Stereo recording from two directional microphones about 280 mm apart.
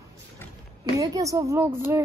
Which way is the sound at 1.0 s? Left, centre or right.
Centre.